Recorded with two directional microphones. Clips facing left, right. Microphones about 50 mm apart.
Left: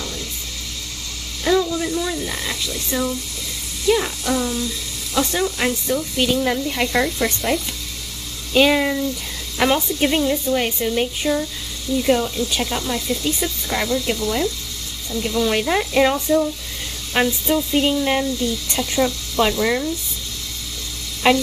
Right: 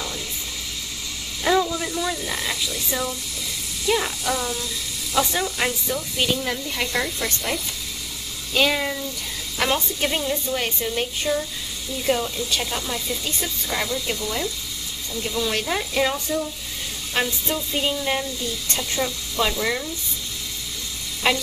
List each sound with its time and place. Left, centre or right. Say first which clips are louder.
1.4 s speech: left 2 dB; centre
6.4 s speech: left 6 dB; centre
21.2 s speech: left 6 dB; centre